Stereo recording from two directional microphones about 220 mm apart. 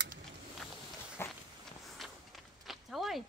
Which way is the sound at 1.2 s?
10° left (ahead or behind).